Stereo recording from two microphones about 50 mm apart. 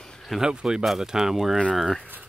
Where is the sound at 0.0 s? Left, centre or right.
Centre.